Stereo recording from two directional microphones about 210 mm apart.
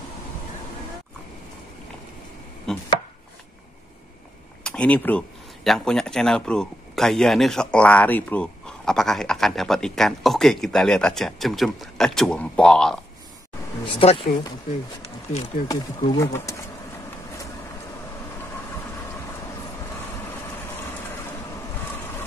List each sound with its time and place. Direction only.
2.7 s speech: 5° left (ahead or behind)
4.6 s speech: 5° left (ahead or behind)
13.9 s speech: 25° left (ahead or behind)
15.7 s speech: 15° left (ahead or behind)